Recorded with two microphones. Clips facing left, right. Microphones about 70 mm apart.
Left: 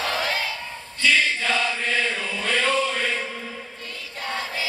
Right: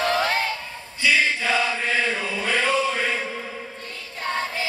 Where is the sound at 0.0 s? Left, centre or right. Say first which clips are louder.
Right 4 dB; right.